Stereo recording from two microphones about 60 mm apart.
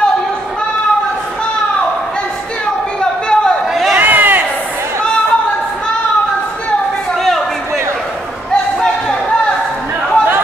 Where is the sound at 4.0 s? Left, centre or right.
Right.